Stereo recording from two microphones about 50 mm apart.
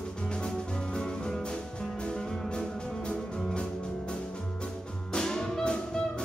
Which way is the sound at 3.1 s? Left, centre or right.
Left.